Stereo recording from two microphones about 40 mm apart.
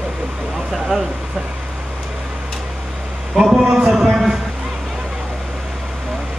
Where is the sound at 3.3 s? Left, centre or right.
Centre.